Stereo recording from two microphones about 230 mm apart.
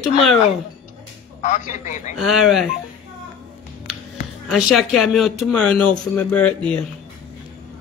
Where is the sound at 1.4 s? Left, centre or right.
Left.